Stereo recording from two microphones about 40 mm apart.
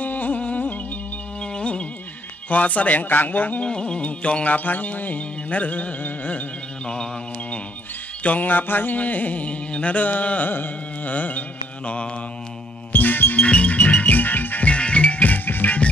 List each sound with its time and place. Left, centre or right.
0.0 s music: left
1.4 s music: left
2.5 s music: left
3.6 s music: left
8.2 s music: left
12.9 s music: left
13.4 s music: left
14.1 s music: left
14.6 s music: left